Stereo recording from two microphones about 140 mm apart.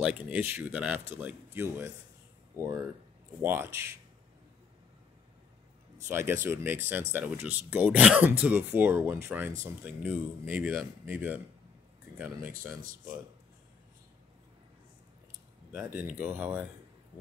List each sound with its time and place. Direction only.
0.3 s speech: 10° right (ahead or behind)
6.0 s speech: 15° right (ahead or behind)
15.8 s speech: 15° right (ahead or behind)